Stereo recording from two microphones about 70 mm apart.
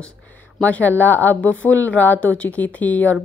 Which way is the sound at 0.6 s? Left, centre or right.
Left.